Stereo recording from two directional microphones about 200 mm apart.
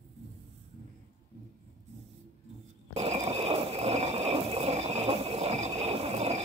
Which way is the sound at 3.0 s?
30° right (ahead or behind).